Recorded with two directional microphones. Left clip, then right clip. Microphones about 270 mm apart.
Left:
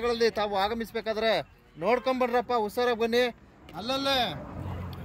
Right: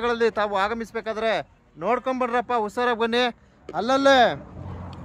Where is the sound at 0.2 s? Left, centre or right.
Right.